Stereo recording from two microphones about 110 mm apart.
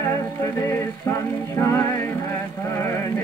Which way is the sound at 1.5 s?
25° left (ahead or behind).